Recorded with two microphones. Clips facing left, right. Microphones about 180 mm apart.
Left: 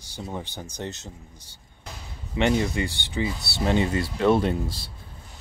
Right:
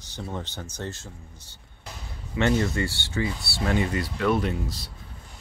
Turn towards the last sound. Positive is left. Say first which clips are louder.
# left 3 dB
turn(degrees=30)  # may be behind; listen again after turning